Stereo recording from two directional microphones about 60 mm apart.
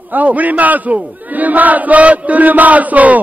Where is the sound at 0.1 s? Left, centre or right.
Right.